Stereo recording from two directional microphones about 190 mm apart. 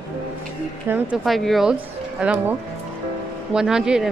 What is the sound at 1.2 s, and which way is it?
Speech, centre (ahead or behind).